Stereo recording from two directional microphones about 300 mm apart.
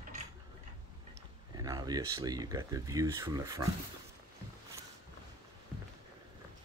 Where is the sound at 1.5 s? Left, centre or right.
Centre.